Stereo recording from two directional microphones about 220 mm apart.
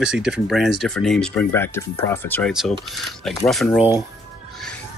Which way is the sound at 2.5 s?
Centre (ahead or behind).